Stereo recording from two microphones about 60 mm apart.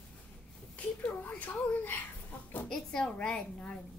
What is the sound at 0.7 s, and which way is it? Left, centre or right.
Speech, left.